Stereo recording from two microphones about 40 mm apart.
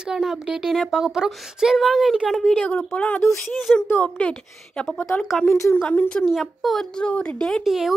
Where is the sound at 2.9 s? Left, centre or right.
Left.